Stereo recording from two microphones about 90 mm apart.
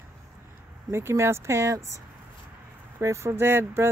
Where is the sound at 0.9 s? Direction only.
30° right (ahead or behind).